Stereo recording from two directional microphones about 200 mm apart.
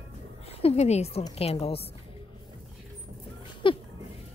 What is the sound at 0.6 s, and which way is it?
Speech, 30° left (ahead or behind).